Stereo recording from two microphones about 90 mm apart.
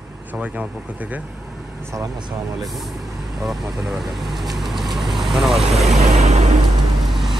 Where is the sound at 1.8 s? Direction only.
35° right (ahead or behind).